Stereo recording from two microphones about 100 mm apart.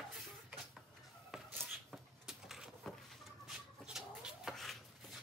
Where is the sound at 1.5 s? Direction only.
20° right (ahead or behind).